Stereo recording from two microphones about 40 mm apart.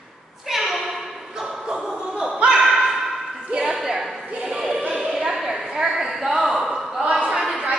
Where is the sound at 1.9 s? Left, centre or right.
Right.